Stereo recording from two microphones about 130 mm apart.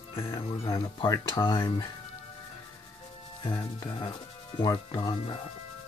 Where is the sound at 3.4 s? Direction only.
35° left (ahead or behind).